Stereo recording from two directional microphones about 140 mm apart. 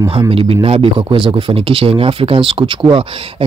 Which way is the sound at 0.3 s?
40° right (ahead or behind).